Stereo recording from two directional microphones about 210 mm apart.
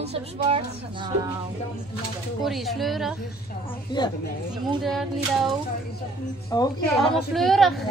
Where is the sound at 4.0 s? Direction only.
20° left (ahead or behind).